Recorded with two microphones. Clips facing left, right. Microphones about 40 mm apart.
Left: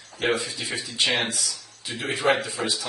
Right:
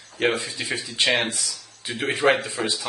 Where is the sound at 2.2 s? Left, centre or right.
Right.